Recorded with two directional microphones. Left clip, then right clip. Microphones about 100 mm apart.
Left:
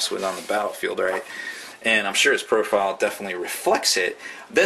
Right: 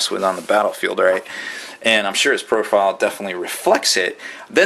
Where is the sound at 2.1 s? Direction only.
10° right (ahead or behind).